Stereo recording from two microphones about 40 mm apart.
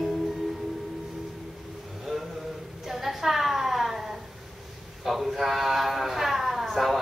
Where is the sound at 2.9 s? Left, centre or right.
Centre.